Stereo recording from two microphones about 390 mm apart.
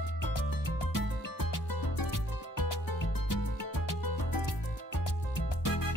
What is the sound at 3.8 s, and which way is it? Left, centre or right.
Music, left.